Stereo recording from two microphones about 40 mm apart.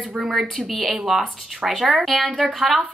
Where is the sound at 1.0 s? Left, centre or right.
Centre.